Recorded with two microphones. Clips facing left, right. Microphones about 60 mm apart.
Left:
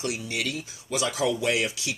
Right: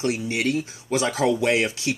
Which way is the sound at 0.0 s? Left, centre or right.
Right.